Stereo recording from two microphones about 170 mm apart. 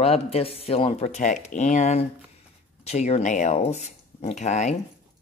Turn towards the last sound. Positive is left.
turn(degrees=45)  # may be behind; listen again after turning